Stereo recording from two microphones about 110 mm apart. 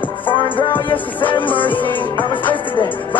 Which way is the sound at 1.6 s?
15° left (ahead or behind).